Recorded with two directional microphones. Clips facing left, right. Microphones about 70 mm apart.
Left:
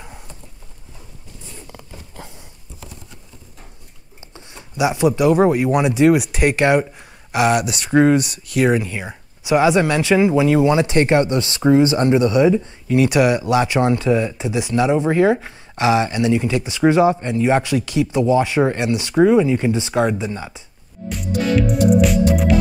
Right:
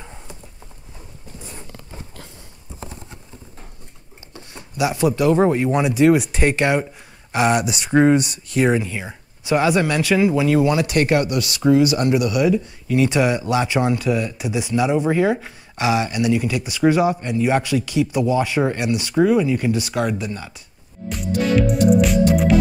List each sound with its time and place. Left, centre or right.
2.8 s clip-clop: right
4.7 s speech: left
6.0 s speech: centre
7.3 s speech: centre
9.0 s speech: centre
21.1 s music: centre